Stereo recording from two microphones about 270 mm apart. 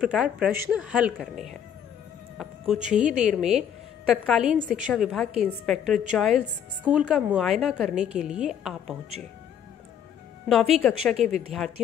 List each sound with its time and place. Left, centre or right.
0.0 s a woman's voice: centre
2.3 s a sound: centre
3.0 s a woman's voice: centre
10.5 s a woman's voice: centre